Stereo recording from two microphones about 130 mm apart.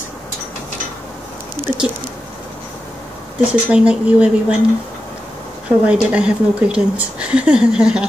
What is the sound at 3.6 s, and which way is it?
Speech, 10° right (ahead or behind).